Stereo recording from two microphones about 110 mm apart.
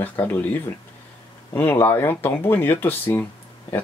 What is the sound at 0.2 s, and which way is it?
Speech, 15° left (ahead or behind).